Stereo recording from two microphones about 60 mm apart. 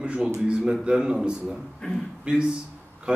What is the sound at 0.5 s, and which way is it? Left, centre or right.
Speech, centre.